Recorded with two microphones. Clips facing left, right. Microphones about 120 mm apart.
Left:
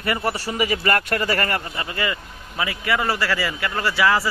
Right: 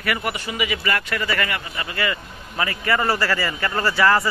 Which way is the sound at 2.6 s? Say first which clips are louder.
Right 1 dB; 5° left (ahead or behind).